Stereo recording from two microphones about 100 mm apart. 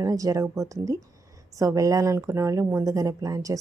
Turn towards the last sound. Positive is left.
turn(degrees=-35)  # may be behind; listen again after turning